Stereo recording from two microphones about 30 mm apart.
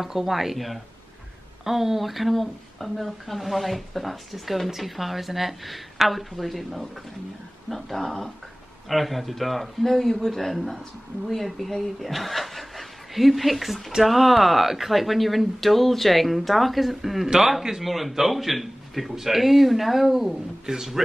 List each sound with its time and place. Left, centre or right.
0.0 s a woman's voice: centre
20.6 s a man's voice: right